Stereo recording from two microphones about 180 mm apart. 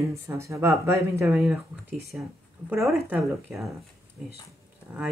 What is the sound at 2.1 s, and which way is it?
Speech, centre (ahead or behind).